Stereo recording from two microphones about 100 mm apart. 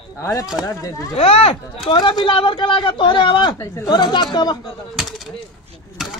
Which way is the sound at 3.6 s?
25° left (ahead or behind).